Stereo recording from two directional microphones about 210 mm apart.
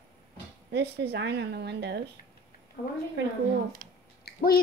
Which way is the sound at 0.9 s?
50° right (ahead or behind).